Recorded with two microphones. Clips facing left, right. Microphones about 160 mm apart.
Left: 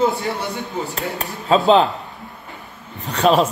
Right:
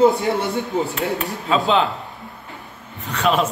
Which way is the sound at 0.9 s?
40° left (ahead or behind).